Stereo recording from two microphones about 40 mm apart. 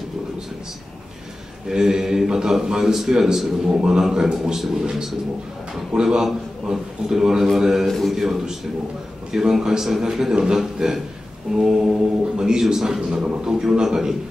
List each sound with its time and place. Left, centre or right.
1.7 s a man's voice: centre
13.2 s a man's voice: right